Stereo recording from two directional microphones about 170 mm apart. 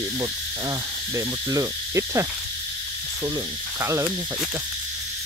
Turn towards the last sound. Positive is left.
turn(degrees=-15)  # may be behind; listen again after turning